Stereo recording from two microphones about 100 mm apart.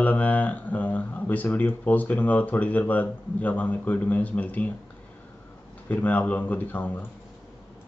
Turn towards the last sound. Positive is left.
turn(degrees=15)  # may be behind; listen again after turning